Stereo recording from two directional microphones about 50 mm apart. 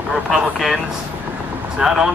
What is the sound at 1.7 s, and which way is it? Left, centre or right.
Speech, centre.